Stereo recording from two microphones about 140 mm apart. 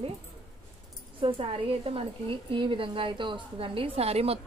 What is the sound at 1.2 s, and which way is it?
A woman's voice, 40° right (ahead or behind).